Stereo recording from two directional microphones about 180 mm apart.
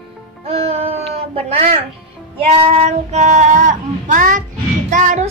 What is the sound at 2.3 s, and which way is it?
Speech, 35° right (ahead or behind).